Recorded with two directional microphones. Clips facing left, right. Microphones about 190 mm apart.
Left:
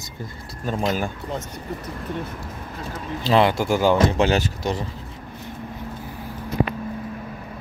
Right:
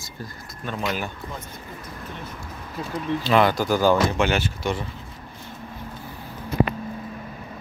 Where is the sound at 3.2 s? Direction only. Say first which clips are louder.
Left 2 dB; 25° left (ahead or behind).